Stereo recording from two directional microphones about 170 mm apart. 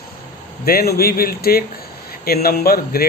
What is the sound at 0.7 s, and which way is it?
A man's voice, 65° left (ahead or behind).